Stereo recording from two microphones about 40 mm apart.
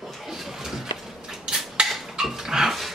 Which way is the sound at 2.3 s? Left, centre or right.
Centre.